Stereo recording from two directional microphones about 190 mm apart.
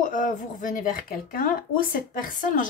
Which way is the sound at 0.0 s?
45° left (ahead or behind).